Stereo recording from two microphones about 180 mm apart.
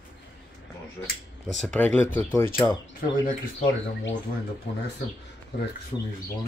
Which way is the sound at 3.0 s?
50° left (ahead or behind).